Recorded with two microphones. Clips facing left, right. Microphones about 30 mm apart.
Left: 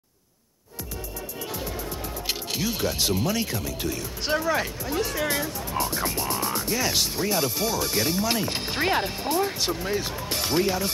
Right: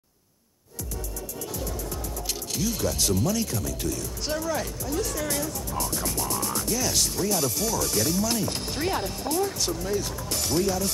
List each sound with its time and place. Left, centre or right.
2.2 s speech: left